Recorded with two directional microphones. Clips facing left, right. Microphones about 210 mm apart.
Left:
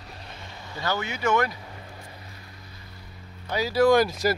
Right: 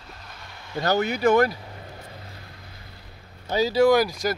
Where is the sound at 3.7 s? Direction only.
10° right (ahead or behind).